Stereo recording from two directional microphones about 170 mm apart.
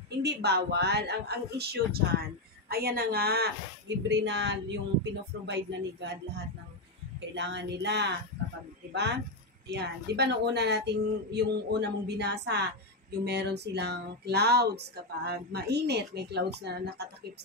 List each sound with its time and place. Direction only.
0.2 s speech: 75° right (ahead or behind)
4.1 s a woman's voice: 90° right
13.2 s speech: 80° right